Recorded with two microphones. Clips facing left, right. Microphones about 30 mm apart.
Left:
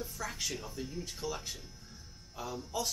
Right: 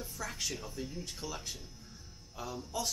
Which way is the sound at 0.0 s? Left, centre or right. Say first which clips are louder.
Left 1 dB; centre.